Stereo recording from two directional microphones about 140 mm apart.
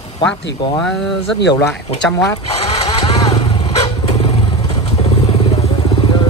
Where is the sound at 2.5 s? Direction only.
50° left (ahead or behind).